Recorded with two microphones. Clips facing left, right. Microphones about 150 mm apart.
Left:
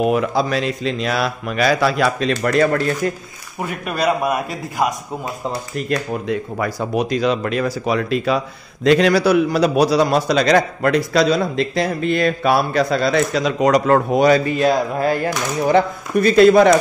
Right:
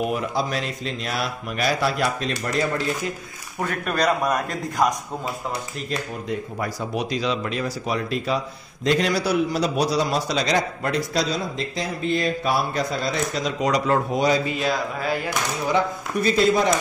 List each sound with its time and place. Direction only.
0.0 s speech: 90° left; by 2.8 s 65° left (ahead or behind)
3.6 s a man's voice: 5° left (ahead or behind)
5.9 s speech: 70° left (ahead or behind)
7.0 s a man's voice: 50° left (ahead or behind)
15.7 s speech: 75° left (ahead or behind)